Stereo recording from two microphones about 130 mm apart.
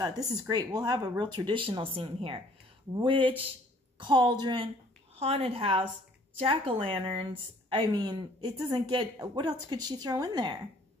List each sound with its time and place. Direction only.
0.0 s a woman's voice: 25° right (ahead or behind)
5.1 s a woman's voice: 50° right (ahead or behind); by 10.6 s 35° right (ahead or behind)